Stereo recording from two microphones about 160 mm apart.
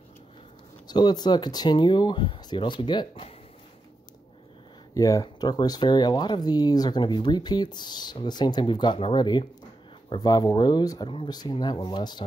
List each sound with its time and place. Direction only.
0.8 s speech: 25° left (ahead or behind)
4.9 s speech: 20° left (ahead or behind)